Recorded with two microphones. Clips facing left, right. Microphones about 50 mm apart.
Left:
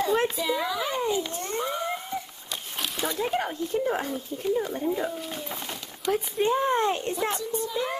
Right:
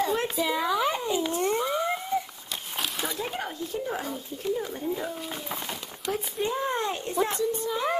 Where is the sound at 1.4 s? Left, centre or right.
Centre.